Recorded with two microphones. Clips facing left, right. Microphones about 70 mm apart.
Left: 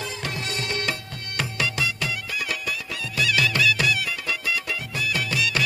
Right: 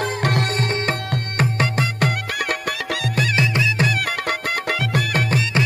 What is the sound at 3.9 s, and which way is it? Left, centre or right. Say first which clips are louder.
Music: right 4 dB; right.